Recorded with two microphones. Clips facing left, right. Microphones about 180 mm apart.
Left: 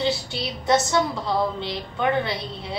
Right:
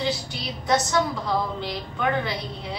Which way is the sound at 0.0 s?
25° left (ahead or behind).